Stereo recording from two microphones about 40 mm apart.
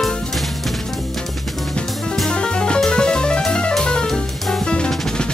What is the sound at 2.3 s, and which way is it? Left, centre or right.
Music, left.